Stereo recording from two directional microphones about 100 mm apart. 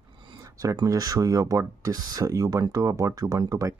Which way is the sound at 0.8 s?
35° right (ahead or behind).